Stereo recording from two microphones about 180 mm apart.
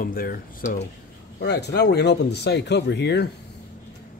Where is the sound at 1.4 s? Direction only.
70° left (ahead or behind).